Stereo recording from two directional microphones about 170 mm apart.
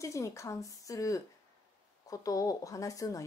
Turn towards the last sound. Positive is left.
turn(degrees=20)  # may be behind; listen again after turning